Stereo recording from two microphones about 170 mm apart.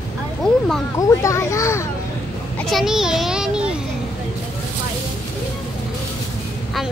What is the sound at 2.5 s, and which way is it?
Children playing, centre (ahead or behind).